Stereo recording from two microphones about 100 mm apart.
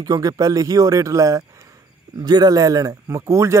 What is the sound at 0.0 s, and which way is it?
Speech, 40° right (ahead or behind).